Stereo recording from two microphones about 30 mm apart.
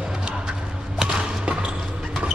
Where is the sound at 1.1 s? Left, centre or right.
Right.